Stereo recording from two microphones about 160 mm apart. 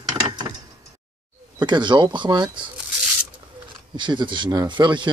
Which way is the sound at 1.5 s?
30° right (ahead or behind).